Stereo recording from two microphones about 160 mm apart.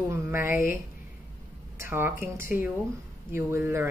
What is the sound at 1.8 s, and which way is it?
A woman's voice, 15° right (ahead or behind).